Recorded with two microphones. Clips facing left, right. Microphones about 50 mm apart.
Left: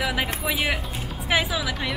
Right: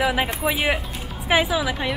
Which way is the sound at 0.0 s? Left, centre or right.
Centre.